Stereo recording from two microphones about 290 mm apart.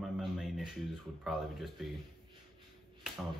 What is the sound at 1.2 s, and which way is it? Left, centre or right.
Speech, centre.